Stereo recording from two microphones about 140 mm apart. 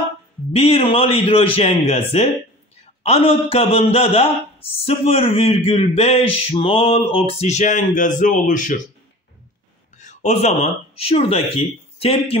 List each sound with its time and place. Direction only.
0.5 s a man's voice: 45° left (ahead or behind); by 8.7 s 70° left (ahead or behind)
9.9 s speech: 55° left (ahead or behind)